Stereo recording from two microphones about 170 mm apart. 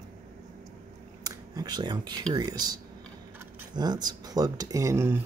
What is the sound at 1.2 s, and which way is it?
Speech, 20° right (ahead or behind).